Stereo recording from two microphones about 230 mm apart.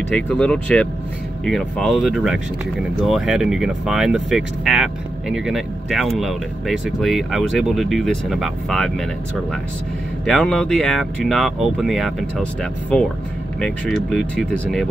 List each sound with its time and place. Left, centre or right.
0.1 s speech: centre
10.2 s speech: centre
13.6 s speech: centre